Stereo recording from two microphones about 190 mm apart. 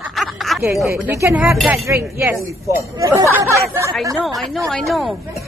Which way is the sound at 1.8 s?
15° right (ahead or behind).